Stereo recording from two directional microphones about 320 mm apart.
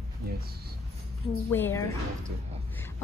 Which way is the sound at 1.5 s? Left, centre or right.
Centre.